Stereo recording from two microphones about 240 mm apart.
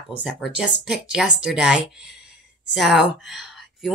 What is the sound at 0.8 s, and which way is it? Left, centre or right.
Speech, centre.